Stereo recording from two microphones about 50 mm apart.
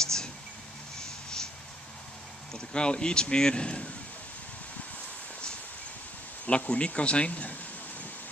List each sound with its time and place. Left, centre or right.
0.0 s a sound: centre
2.5 s speech: centre
6.4 s speech: left